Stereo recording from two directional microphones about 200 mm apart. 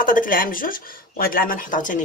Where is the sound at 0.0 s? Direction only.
45° left (ahead or behind).